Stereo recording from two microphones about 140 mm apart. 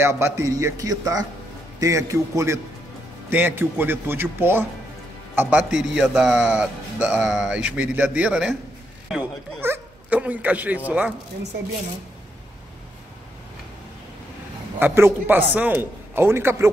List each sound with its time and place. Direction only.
0.0 s a man's voice: 20° right (ahead or behind)
14.8 s a man's voice: 15° right (ahead or behind)